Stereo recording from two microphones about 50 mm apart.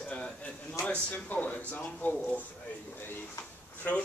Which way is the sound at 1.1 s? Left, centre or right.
Left.